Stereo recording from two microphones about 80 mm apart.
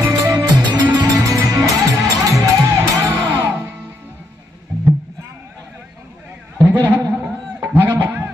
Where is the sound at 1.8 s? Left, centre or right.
Right.